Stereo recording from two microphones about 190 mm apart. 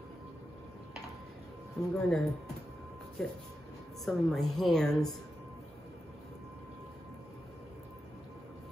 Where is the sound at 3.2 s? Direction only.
5° left (ahead or behind).